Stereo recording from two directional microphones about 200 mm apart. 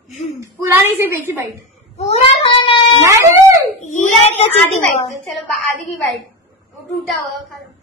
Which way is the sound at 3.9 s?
35° left (ahead or behind).